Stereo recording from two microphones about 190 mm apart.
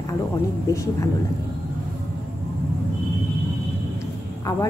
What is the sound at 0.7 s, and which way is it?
Speech, 15° left (ahead or behind).